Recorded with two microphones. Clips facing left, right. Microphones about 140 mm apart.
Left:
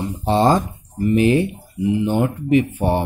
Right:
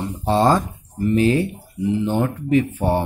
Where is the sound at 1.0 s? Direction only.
20° left (ahead or behind).